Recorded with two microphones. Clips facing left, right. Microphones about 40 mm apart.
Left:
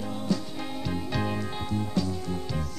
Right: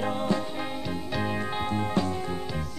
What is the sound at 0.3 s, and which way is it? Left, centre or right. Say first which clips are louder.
Music: even; right.